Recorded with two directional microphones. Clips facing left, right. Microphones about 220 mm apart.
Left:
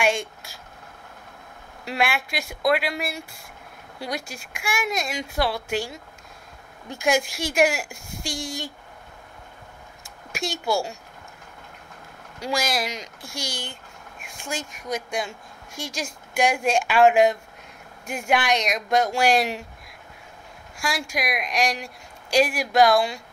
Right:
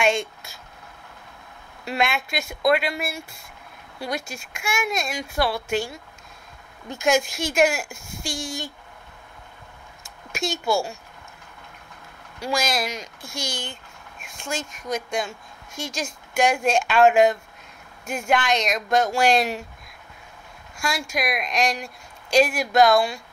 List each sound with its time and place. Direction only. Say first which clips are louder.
0.0 s a sound: right 1 dB; 10° left (ahead or behind)
1.9 s speech: right 1 dB; 10° left (ahead or behind)
10.3 s speech: right 2 dB; 15° left (ahead or behind)
12.4 s speech: right 1 dB; 15° left (ahead or behind)
20.9 s speech: right 1 dB; 15° left (ahead or behind)